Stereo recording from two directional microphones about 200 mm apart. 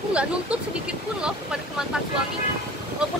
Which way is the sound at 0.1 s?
5° right (ahead or behind).